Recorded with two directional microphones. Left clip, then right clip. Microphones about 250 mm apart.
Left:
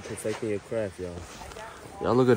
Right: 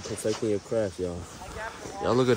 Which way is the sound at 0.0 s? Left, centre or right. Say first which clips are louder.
Right 3 dB; left.